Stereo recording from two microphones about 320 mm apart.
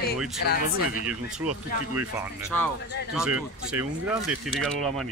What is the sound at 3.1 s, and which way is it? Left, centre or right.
Speech, centre.